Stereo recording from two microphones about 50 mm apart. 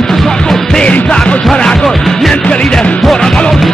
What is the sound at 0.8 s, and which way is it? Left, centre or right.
Music, left.